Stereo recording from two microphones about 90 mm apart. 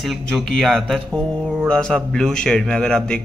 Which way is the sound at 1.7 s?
10° left (ahead or behind).